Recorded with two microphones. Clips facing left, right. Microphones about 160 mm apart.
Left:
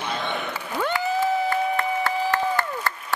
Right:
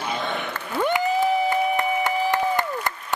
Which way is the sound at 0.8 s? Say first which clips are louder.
Right 3 dB; 15° right (ahead or behind).